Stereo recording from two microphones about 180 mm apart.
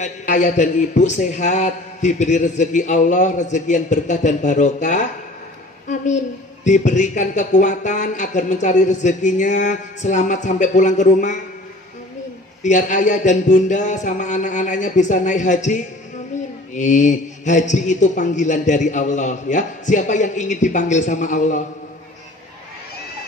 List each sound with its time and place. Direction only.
0.0 s a man's voice: 40° left (ahead or behind)
6.6 s a man's voice: 40° left (ahead or behind)
12.6 s a man's voice: 45° left (ahead or behind)